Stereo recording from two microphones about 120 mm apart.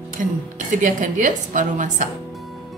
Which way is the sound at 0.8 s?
90° right.